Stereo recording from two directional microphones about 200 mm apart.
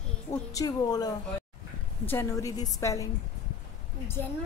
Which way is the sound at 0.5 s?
20° left (ahead or behind).